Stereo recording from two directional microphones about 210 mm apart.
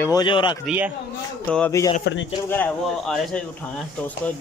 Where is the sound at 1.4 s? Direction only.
5° left (ahead or behind).